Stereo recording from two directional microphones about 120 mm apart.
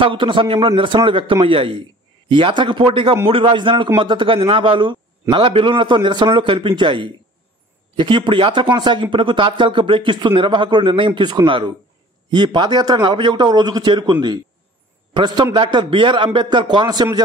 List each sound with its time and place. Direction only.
0.0 s a man's voice: 45° right (ahead or behind)
15.1 s a man's voice: 40° right (ahead or behind)